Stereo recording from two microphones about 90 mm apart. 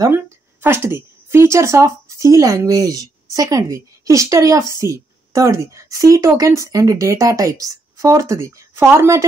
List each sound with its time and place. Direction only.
0.1 s a woman's voice: 25° right (ahead or behind)